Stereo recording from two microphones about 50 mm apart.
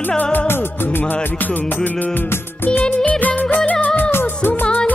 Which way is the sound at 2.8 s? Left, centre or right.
Left.